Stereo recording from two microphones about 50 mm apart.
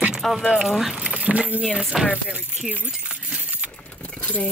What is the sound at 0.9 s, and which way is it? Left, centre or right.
Keys jangling, centre.